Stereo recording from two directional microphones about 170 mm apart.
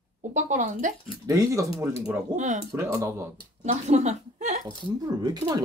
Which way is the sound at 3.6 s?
40° right (ahead or behind).